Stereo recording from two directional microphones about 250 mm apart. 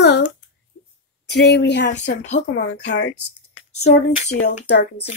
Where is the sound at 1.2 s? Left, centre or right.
Left.